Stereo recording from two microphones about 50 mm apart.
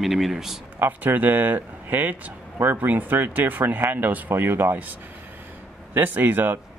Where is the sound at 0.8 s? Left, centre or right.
Right.